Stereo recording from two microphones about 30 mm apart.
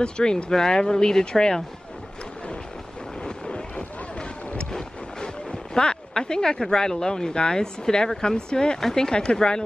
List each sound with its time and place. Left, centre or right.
0.0 s speech: left
3.3 s boat: left
6.7 s speech: left
9.1 s speech: left